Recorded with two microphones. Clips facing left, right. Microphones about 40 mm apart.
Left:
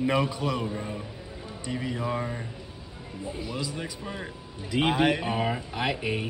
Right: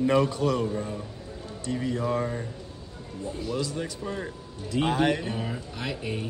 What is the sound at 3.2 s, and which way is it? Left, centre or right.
Speech, centre.